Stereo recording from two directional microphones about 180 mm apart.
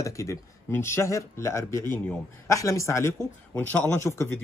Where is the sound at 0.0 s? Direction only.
15° left (ahead or behind).